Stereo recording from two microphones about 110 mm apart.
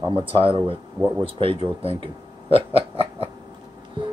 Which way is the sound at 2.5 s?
60° right (ahead or behind).